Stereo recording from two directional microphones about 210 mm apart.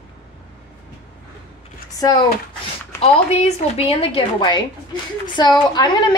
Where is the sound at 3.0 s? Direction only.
30° left (ahead or behind).